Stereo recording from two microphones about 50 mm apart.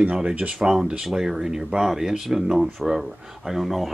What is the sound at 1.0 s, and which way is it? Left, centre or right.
Speech, centre.